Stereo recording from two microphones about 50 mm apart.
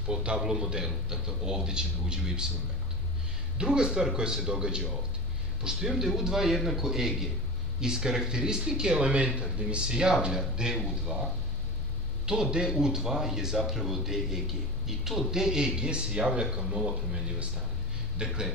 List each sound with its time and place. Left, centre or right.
0.1 s a sound: right
0.4 s speech: centre
3.5 s speech: centre
12.3 s speech: centre